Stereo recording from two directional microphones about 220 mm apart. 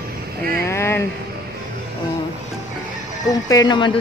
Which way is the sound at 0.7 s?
10° left (ahead or behind).